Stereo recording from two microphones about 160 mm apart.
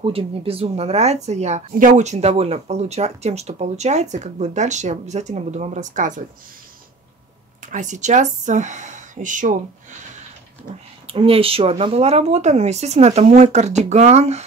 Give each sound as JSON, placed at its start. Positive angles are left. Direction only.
{"t": 0.0, "sound": "speech", "side_deg": -35}
{"t": 1.7, "sound": "speech", "side_deg": -55}
{"t": 7.6, "sound": "speech", "side_deg": -50}
{"t": 11.1, "sound": "speech", "side_deg": -35}